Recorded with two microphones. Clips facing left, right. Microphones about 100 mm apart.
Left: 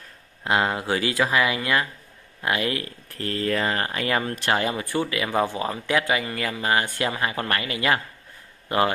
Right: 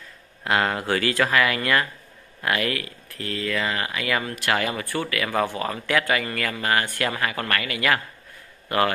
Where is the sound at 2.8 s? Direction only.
35° left (ahead or behind).